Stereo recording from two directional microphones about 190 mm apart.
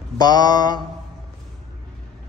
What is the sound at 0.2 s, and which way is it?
Mantra, 20° left (ahead or behind).